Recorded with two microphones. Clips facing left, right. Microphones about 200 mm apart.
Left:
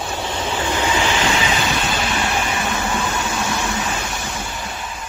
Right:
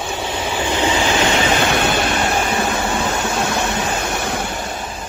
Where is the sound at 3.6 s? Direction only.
60° right (ahead or behind).